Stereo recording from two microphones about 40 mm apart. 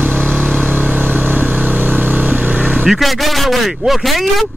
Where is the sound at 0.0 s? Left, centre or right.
Right.